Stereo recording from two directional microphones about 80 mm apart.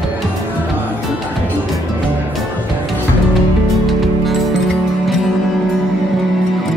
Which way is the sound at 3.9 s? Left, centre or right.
Centre.